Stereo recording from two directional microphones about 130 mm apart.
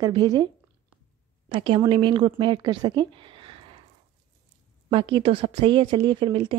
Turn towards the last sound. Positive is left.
turn(degrees=-40)  # may be behind; listen again after turning